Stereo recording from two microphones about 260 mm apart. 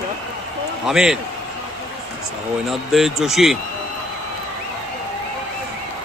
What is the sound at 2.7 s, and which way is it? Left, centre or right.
Speech, centre.